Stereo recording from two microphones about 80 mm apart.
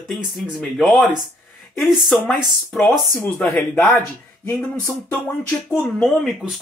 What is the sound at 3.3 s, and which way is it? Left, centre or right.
Speech, centre.